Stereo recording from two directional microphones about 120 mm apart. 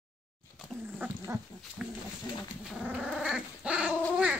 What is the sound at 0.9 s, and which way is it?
Wild animals, 20° right (ahead or behind).